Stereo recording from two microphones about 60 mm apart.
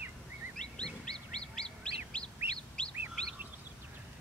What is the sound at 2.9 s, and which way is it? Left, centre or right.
Chirp, right.